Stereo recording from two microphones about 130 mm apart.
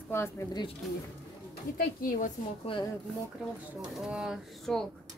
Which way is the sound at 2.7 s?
45° left (ahead or behind).